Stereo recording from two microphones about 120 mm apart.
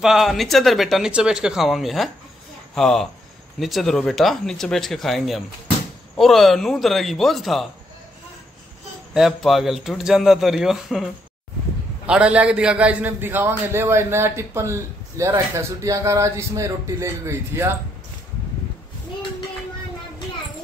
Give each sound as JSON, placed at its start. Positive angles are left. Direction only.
{"t": 0.0, "sound": "speech", "side_deg": 0}
{"t": 9.1, "sound": "speech", "side_deg": 0}
{"t": 12.1, "sound": "a man's voice", "side_deg": -10}